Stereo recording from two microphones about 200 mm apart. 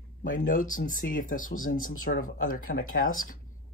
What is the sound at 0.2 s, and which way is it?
Speech, 45° left (ahead or behind).